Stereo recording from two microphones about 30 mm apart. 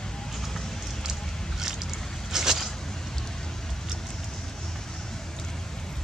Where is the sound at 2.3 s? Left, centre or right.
Centre.